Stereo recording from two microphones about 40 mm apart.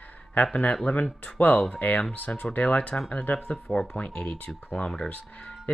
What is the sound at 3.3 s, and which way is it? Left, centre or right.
Speech, left.